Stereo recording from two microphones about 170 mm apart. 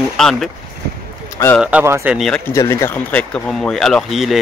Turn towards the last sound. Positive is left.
turn(degrees=0)  # may be behind; listen again after turning